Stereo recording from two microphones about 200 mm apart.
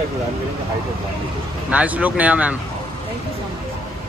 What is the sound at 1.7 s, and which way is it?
Speech, 5° right (ahead or behind).